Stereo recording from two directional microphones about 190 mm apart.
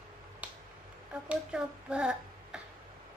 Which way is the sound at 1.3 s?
5° right (ahead or behind).